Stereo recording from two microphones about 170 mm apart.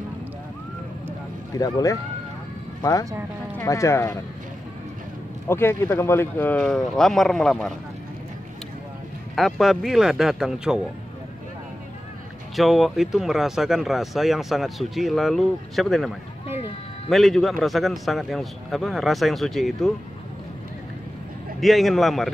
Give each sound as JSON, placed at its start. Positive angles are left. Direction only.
{"t": 1.5, "sound": "speech", "side_deg": 20}
{"t": 5.5, "sound": "speech", "side_deg": 15}
{"t": 9.3, "sound": "speech", "side_deg": 0}
{"t": 12.5, "sound": "speech", "side_deg": 0}
{"t": 17.1, "sound": "speech", "side_deg": 0}
{"t": 21.5, "sound": "speech", "side_deg": 0}